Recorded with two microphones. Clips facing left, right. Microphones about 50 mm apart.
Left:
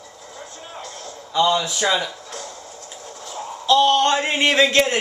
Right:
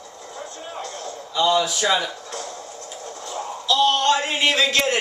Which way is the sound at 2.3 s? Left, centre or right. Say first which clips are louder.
Right 2 dB; centre.